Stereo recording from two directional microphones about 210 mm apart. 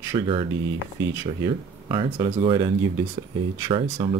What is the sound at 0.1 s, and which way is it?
Speech, 25° right (ahead or behind).